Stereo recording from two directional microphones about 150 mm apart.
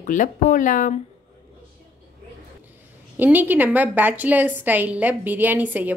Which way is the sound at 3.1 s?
10° right (ahead or behind).